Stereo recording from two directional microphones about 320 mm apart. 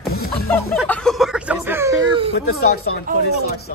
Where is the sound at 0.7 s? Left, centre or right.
Centre.